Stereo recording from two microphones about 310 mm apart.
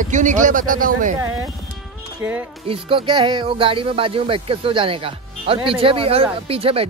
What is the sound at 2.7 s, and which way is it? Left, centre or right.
Speech, centre.